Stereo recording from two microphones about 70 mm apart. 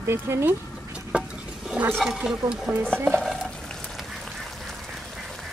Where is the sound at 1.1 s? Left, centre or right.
Centre.